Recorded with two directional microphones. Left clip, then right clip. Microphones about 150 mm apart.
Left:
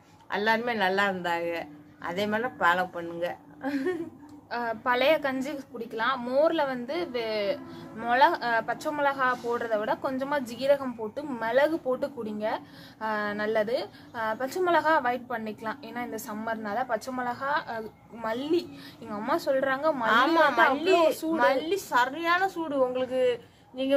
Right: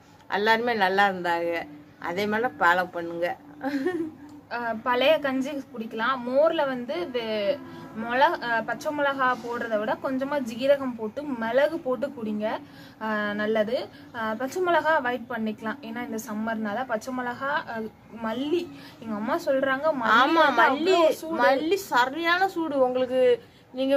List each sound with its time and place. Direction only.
0.3 s a man's voice: 25° right (ahead or behind)
4.5 s a woman's voice: 30° left (ahead or behind)
20.1 s a man's voice: 20° right (ahead or behind)